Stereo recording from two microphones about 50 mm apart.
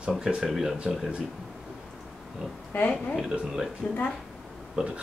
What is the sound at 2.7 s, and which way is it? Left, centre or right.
Speech, left.